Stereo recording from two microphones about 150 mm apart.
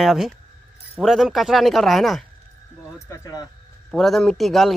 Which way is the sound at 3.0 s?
20° left (ahead or behind).